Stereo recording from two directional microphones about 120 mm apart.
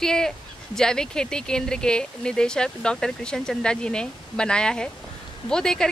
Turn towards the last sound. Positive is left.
turn(degrees=5)  # may be behind; listen again after turning